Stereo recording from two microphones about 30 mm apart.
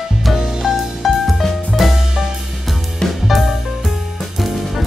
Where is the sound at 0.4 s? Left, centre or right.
Centre.